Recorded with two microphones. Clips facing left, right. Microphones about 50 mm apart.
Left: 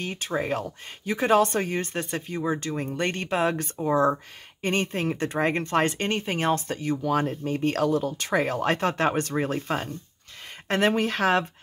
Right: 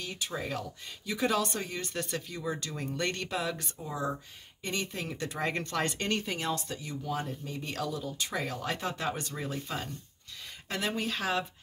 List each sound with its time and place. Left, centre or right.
0.0 s speech: left
2.0 s speech: left
6.3 s speech: left
7.0 s speech: left